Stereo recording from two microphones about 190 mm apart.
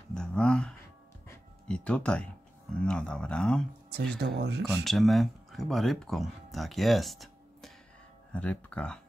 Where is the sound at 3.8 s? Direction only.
60° right (ahead or behind).